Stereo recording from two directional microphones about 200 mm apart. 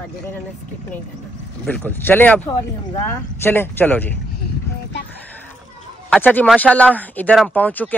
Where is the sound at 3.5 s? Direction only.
10° left (ahead or behind).